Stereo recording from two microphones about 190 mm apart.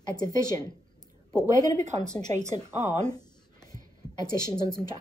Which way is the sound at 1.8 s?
40° right (ahead or behind).